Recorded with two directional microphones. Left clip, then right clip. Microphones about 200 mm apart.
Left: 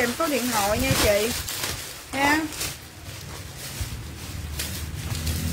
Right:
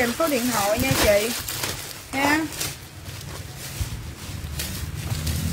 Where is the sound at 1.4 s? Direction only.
25° right (ahead or behind).